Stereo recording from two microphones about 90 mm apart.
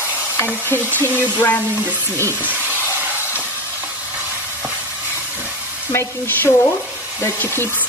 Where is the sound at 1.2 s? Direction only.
20° left (ahead or behind).